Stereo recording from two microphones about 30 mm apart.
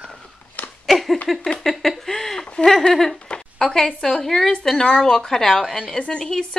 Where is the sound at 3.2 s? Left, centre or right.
Left.